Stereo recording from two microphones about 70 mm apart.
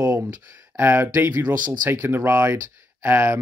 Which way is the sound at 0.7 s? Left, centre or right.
Right.